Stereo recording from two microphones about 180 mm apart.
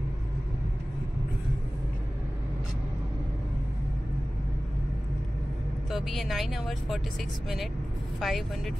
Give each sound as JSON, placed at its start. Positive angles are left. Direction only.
{"t": 5.9, "sound": "speech", "side_deg": 0}
{"t": 8.2, "sound": "speech", "side_deg": 0}